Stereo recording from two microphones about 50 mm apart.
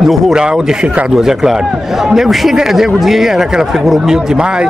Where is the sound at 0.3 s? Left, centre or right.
Centre.